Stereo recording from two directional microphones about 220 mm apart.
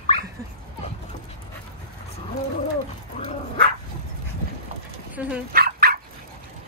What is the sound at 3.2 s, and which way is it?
Dog, 25° left (ahead or behind).